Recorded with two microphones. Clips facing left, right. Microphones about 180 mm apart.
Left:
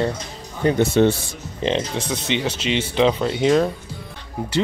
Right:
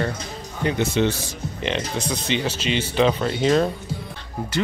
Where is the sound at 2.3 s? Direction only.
70° left (ahead or behind).